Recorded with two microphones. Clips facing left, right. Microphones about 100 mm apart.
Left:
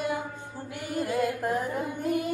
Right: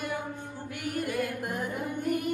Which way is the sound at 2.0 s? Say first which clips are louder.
Left 1 dB; 15° left (ahead or behind).